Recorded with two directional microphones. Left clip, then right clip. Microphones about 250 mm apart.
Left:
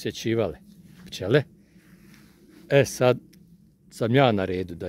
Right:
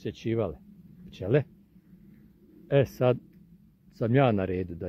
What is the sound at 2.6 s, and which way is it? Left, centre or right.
Speech, centre.